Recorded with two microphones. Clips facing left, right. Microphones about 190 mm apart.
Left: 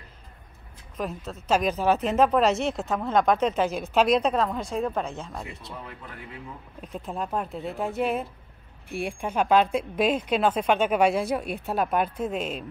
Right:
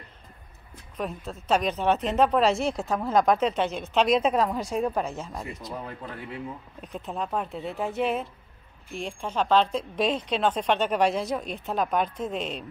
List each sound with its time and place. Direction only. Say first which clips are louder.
0.9 s speech: even; centre (ahead or behind)
5.5 s speech: right 4 dB; 35° right (ahead or behind)
6.8 s speech: left 1 dB; centre (ahead or behind)